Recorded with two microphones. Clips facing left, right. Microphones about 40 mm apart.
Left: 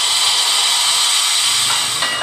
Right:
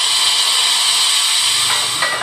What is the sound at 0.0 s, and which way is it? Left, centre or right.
Hair dryer, right.